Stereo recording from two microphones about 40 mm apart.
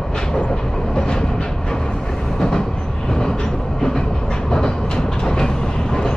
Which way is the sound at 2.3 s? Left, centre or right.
Centre.